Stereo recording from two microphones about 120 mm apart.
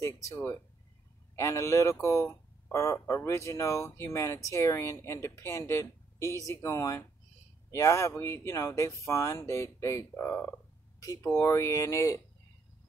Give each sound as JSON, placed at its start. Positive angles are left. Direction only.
{"t": 0.0, "sound": "speech", "side_deg": 25}